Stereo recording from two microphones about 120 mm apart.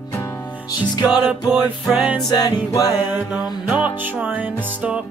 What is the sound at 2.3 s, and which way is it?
Music, 30° left (ahead or behind).